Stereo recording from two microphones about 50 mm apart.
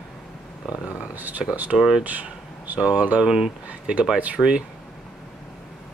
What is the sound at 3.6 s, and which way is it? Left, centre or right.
Speech, right.